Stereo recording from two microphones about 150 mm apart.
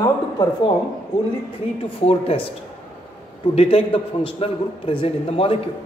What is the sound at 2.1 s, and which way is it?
Speech, 40° left (ahead or behind).